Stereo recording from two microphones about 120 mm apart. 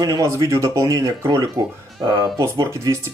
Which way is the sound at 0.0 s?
30° right (ahead or behind).